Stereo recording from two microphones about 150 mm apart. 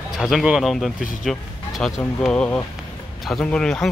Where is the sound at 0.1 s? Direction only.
Centre (ahead or behind).